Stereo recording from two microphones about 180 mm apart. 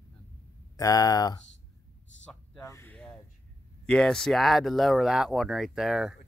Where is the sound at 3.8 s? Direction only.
5° left (ahead or behind).